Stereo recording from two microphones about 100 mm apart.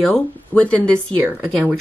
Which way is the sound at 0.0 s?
10° left (ahead or behind).